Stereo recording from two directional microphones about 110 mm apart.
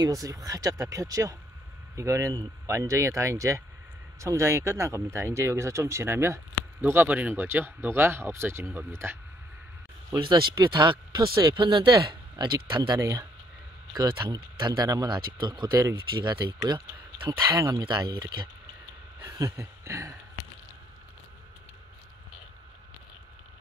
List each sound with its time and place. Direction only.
0.0 s speech: 30° right (ahead or behind)
10.2 s speech: 45° right (ahead or behind)
13.0 s speech: 30° right (ahead or behind)
15.1 s speech: 45° right (ahead or behind)
15.7 s speech: 25° right (ahead or behind)
16.2 s speech: 40° right (ahead or behind)
17.8 s speech: 40° right (ahead or behind)
19.2 s a sound: 30° right (ahead or behind)